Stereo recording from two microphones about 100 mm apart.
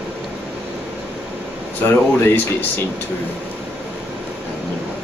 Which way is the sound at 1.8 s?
25° left (ahead or behind).